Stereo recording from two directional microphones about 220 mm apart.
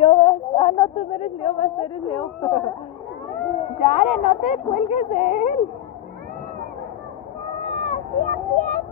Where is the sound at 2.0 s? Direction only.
20° left (ahead or behind).